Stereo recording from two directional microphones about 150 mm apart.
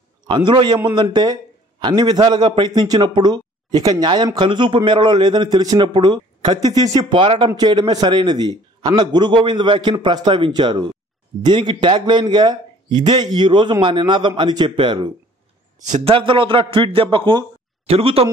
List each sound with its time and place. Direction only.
0.5 s a man's voice: 30° right (ahead or behind)